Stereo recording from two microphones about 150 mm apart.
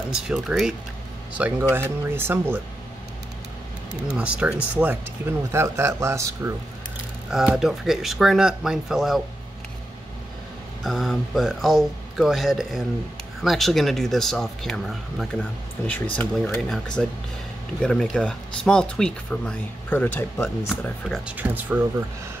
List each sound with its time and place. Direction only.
0.1 s speech: 5° right (ahead or behind)
4.1 s speech: 10° right (ahead or behind)
7.2 s speech: 5° right (ahead or behind)
10.8 s speech: centre (ahead or behind)
15.9 s speech: 10° left (ahead or behind)
21.0 s speech: centre (ahead or behind)
21.4 s speech: 10° right (ahead or behind)